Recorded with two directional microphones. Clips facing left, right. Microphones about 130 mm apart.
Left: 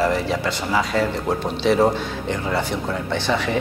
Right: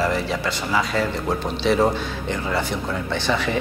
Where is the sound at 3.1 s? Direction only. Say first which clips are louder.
Left 1 dB; 30° left (ahead or behind).